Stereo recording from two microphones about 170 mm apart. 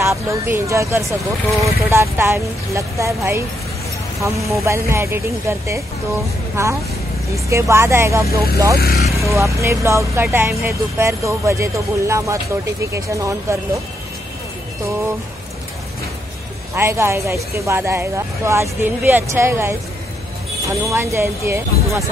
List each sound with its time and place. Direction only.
0.0 s speech: 15° right (ahead or behind)
8.7 s speech: 60° left (ahead or behind)
9.2 s speech: 15° right (ahead or behind)
16.7 s speech: 15° right (ahead or behind)
20.9 s speech: 15° right (ahead or behind)